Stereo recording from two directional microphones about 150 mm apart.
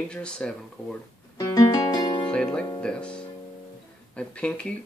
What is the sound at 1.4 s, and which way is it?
Music, 25° left (ahead or behind).